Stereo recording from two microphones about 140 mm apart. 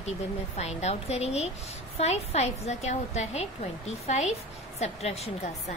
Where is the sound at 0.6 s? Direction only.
50° left (ahead or behind).